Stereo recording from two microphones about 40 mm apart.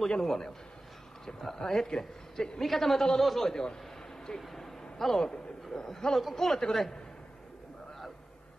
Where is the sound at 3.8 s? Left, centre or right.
Centre.